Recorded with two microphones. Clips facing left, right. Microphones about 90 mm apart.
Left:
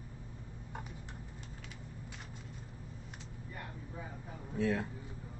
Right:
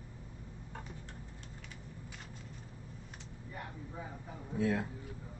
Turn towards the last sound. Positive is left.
turn(degrees=-10)  # may be behind; listen again after turning